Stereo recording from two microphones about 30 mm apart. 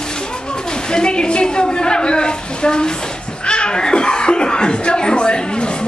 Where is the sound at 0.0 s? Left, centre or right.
Left.